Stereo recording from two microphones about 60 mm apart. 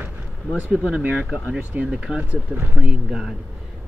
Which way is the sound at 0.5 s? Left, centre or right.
Right.